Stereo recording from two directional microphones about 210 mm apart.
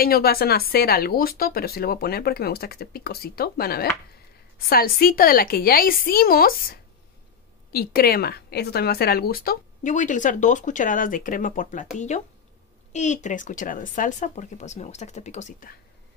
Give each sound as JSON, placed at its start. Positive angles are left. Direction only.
{"t": 0.0, "sound": "a woman's voice", "side_deg": 45}
{"t": 12.9, "sound": "a woman's voice", "side_deg": 35}